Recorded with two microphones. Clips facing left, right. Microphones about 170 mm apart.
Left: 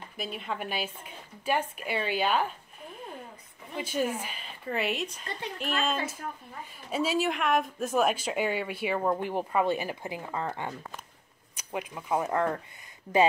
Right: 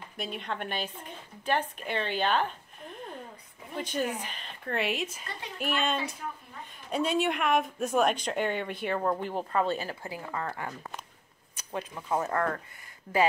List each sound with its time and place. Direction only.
0.2 s speech: 5° left (ahead or behind)